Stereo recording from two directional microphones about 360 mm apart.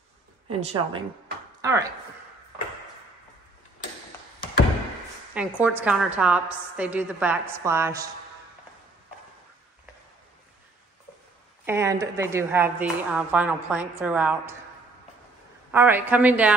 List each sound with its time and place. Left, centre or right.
0.5 s a woman's voice: centre
5.3 s a woman's voice: centre
11.6 s a woman's voice: centre
15.7 s a woman's voice: centre